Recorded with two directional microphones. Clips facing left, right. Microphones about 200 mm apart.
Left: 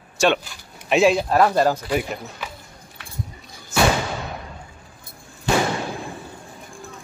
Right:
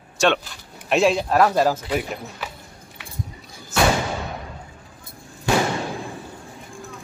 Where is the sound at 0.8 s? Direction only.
Centre (ahead or behind).